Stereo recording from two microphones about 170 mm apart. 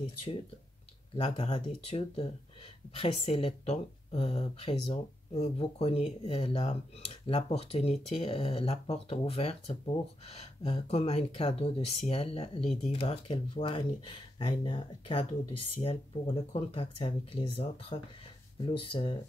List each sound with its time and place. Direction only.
1.1 s speech: 35° left (ahead or behind)